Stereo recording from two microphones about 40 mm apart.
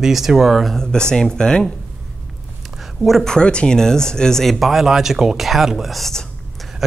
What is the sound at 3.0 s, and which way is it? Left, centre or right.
Speech, centre.